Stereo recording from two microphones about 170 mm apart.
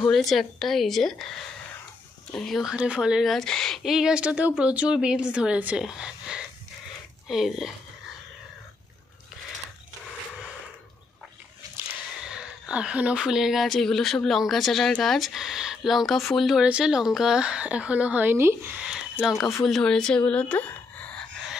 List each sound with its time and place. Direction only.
0.1 s speech: centre (ahead or behind)
11.6 s a sound: 20° right (ahead or behind)
12.2 s speech: 5° right (ahead or behind)